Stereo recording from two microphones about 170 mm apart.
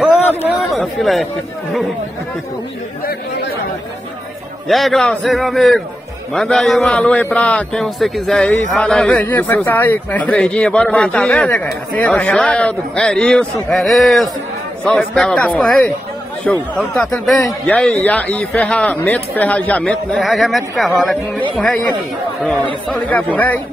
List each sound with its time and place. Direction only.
0.4 s chatter: centre (ahead or behind)
4.6 s a man's voice: centre (ahead or behind)
22.8 s a man's voice: 10° left (ahead or behind)